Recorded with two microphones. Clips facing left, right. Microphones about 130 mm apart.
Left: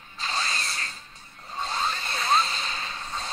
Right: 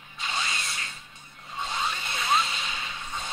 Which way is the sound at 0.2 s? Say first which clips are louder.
Left 2 dB; 35° left (ahead or behind).